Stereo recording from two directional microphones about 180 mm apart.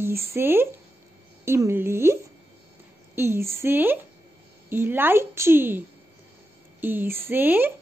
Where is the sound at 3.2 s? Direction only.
15° right (ahead or behind).